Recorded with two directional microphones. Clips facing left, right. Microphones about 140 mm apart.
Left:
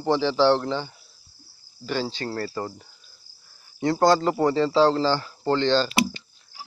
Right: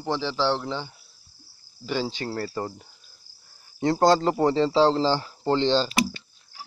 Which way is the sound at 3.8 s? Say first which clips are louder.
Even; 30° right (ahead or behind).